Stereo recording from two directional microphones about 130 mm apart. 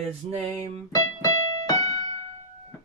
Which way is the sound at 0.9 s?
30° left (ahead or behind).